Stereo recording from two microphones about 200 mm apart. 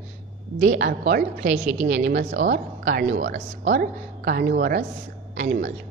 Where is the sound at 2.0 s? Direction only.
60° right (ahead or behind).